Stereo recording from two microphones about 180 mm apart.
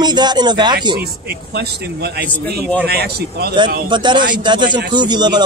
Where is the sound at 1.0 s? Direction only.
60° right (ahead or behind).